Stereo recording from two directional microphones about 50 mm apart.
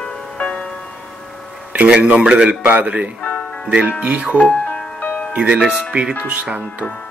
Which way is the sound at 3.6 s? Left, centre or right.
Right.